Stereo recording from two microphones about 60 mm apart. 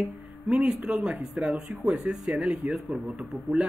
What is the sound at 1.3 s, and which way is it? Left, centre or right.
Speech, right.